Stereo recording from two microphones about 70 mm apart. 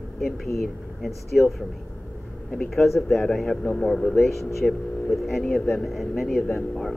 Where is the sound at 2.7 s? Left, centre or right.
Centre.